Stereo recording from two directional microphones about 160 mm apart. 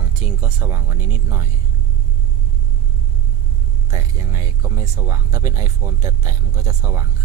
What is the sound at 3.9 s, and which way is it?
Speech, 20° right (ahead or behind).